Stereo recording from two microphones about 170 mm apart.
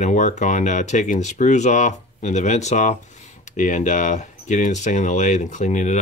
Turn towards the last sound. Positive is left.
turn(degrees=45)  # may be behind; listen again after turning